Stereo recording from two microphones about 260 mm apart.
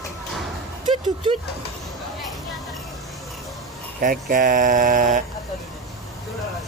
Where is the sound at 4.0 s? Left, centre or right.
Right.